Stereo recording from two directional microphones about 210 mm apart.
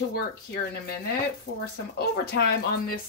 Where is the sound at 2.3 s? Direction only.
50° left (ahead or behind).